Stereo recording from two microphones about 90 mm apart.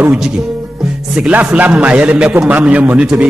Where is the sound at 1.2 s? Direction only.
15° right (ahead or behind).